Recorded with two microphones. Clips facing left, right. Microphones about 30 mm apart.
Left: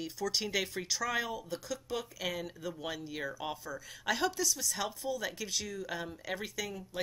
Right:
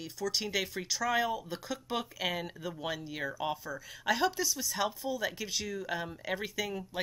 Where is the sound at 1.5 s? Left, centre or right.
Right.